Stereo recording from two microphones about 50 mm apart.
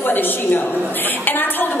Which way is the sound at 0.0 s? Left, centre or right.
Left.